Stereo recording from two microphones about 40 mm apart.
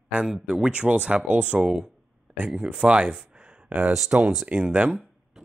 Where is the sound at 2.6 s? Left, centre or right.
Right.